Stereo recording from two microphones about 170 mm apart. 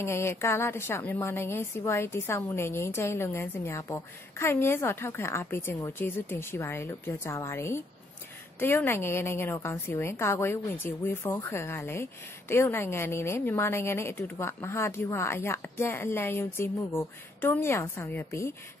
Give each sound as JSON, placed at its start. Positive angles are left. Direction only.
{"t": 0.0, "sound": "a woman's voice", "side_deg": 15}